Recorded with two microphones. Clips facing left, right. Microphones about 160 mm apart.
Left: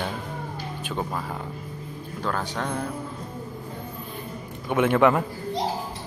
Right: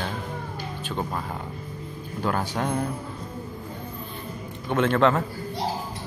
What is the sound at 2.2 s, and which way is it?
Speech, 10° right (ahead or behind).